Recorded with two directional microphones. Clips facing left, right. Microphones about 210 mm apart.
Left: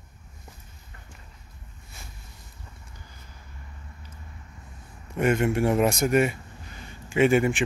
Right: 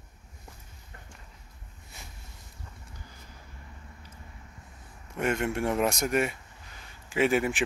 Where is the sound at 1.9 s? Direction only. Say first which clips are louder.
Left 1 dB; 20° right (ahead or behind).